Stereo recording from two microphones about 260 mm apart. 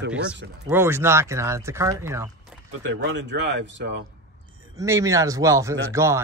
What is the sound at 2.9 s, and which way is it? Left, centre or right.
Speech, right.